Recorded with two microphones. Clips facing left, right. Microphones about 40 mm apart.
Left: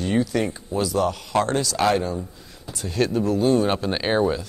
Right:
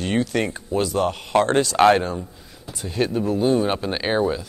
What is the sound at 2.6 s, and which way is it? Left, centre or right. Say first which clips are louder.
Speech: even; centre.